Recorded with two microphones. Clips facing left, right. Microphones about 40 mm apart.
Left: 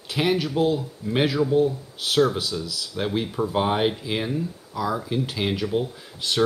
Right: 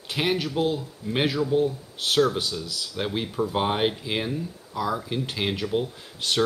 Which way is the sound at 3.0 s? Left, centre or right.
Centre.